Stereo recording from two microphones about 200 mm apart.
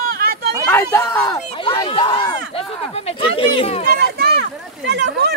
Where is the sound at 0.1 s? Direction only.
50° right (ahead or behind).